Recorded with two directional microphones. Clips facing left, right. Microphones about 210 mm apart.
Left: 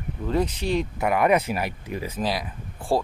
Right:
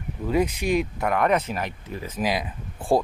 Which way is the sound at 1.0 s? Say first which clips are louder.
Left 5 dB; 5° left (ahead or behind).